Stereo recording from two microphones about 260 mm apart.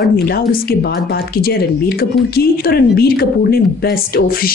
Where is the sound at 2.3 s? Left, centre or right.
Left.